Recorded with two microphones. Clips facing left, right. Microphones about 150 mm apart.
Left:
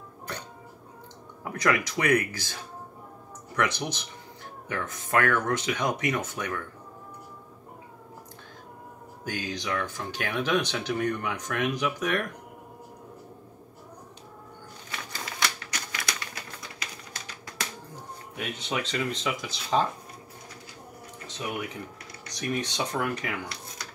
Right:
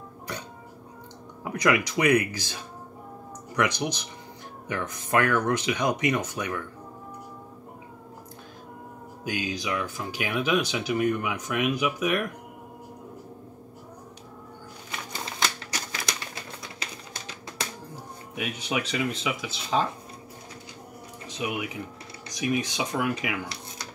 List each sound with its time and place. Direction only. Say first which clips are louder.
1.4 s speech: right 2 dB; 20° right (ahead or behind)
3.5 s speech: right 2 dB; 15° right (ahead or behind)
9.2 s speech: right 3 dB; 10° right (ahead or behind)
14.9 s typewriter: right 2 dB; 25° right (ahead or behind)
18.3 s speech: right 2 dB; 10° right (ahead or behind)
21.3 s speech: right 2 dB; 10° right (ahead or behind)